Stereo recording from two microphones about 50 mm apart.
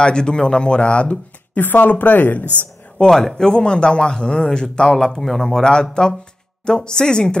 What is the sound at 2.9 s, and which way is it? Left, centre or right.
Speech, centre.